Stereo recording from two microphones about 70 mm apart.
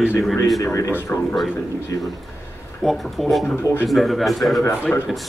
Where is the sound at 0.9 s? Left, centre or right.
Left.